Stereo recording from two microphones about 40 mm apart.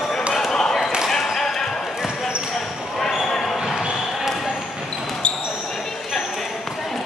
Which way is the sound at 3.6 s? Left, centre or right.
Centre.